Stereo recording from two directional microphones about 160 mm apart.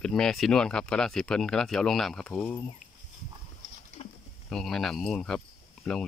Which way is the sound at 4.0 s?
45° left (ahead or behind).